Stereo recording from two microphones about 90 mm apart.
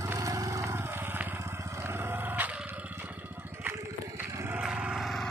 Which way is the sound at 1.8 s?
25° right (ahead or behind).